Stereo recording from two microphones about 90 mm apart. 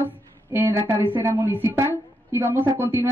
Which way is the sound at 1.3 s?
35° right (ahead or behind).